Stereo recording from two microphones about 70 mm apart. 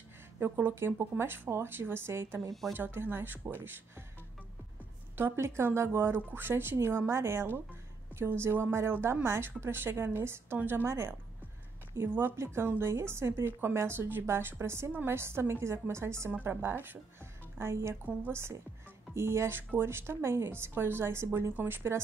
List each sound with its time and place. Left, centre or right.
0.4 s a woman's voice: right
5.1 s a woman's voice: right